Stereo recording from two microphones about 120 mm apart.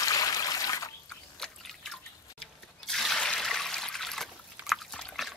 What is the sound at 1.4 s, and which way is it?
Drip, 5° left (ahead or behind).